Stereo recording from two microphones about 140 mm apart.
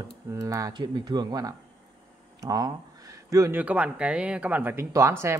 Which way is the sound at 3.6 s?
10° right (ahead or behind).